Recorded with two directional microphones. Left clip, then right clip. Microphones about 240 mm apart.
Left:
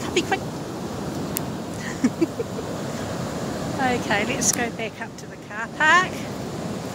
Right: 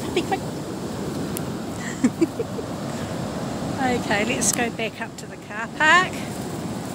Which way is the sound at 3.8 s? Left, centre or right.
Centre.